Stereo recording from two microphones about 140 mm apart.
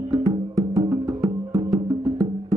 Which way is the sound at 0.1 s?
25° right (ahead or behind).